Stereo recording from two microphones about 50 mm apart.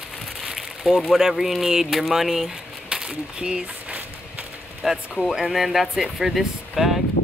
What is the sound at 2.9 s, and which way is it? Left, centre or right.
Speech, centre.